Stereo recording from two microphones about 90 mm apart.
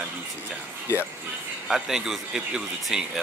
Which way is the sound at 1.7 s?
5° right (ahead or behind).